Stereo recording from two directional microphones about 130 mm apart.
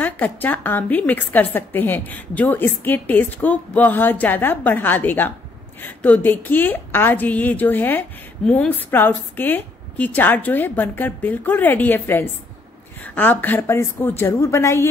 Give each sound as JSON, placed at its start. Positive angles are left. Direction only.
{"t": 0.0, "sound": "a woman's voice", "side_deg": 15}